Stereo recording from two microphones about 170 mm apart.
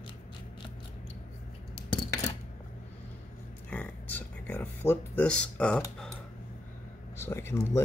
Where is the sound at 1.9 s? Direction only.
30° left (ahead or behind).